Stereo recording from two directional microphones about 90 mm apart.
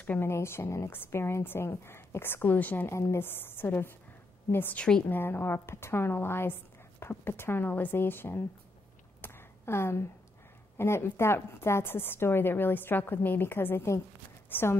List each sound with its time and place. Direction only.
0.0 s speech: 20° left (ahead or behind)
0.3 s a woman's voice: 30° left (ahead or behind)
2.9 s a woman's voice: 30° left (ahead or behind)
9.2 s a sound: 25° left (ahead or behind)
10.8 s a woman's voice: 30° left (ahead or behind)